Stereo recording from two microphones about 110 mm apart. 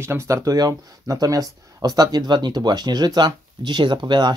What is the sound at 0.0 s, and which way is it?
Speech, 25° right (ahead or behind).